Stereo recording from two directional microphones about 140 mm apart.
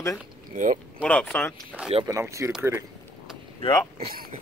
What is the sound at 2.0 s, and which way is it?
Speech, 20° right (ahead or behind).